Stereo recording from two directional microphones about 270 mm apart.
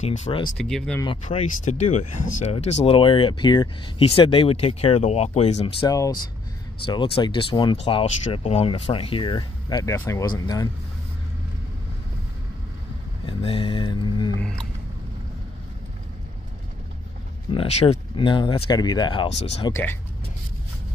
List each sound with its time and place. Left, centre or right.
0.0 s speech: left
0.6 s speech: centre
1.0 s speech: centre
13.3 s mantra: centre
17.5 s speech: left
19.7 s speech: centre